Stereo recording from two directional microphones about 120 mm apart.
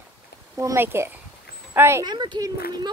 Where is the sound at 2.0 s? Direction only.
35° right (ahead or behind).